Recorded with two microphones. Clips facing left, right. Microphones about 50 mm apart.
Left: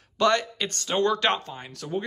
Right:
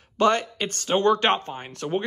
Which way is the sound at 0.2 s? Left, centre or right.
Right.